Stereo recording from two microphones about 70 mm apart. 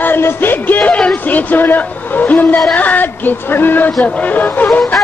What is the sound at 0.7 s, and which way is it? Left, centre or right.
Speech, centre.